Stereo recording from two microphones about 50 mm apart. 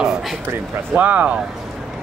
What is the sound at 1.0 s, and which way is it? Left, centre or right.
Speech, right.